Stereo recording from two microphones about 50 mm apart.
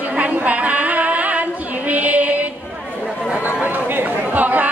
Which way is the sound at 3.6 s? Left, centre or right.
Right.